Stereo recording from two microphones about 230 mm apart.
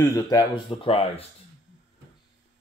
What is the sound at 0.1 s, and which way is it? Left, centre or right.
Speech, centre.